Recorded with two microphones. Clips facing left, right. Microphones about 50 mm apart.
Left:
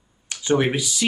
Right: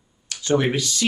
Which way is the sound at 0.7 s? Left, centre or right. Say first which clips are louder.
Right 1 dB; centre.